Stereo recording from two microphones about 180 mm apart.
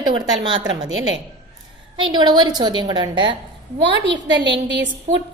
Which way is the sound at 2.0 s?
25° right (ahead or behind).